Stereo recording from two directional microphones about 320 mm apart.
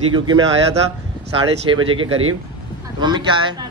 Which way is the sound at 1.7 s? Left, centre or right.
Centre.